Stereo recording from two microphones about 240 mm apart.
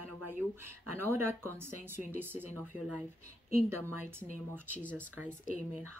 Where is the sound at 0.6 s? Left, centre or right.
Right.